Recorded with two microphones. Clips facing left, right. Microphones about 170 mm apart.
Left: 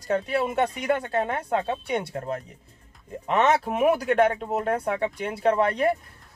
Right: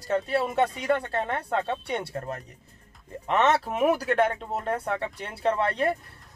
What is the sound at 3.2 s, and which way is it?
Speech, 5° left (ahead or behind).